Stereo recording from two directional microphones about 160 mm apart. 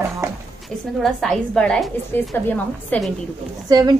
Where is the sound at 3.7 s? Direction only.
25° right (ahead or behind).